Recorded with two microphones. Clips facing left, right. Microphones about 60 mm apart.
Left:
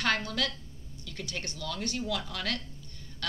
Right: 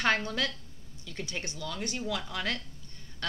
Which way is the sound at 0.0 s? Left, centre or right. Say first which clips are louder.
Right 1 dB; right.